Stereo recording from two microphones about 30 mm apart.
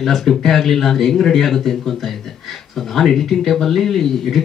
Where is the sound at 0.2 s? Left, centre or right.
Centre.